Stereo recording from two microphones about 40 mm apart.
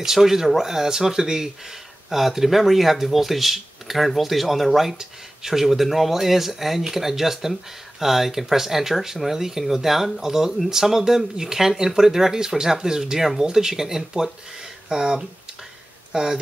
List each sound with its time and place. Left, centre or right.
0.0 s speech: centre